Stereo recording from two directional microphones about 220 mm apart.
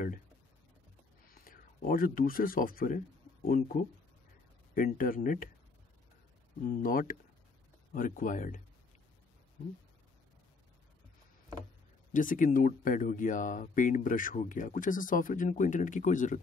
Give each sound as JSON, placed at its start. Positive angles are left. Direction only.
{"t": 1.3, "sound": "speech", "side_deg": 40}
{"t": 6.8, "sound": "speech", "side_deg": 40}
{"t": 12.1, "sound": "speech", "side_deg": 35}